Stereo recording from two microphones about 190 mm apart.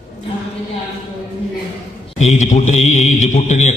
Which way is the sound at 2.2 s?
35° left (ahead or behind).